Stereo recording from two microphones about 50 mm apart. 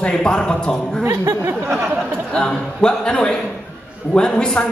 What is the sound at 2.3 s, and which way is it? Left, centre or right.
Speech, centre.